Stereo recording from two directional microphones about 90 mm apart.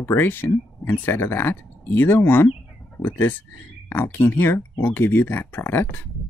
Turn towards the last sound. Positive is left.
turn(degrees=25)  # may be behind; listen again after turning